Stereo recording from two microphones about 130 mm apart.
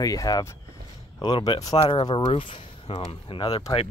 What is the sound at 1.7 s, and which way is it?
Speech, 45° left (ahead or behind).